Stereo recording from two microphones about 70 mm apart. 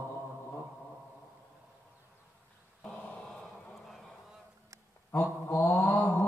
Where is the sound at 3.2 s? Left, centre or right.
Centre.